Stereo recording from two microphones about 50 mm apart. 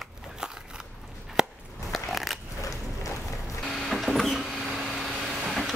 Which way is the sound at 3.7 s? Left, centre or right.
Centre.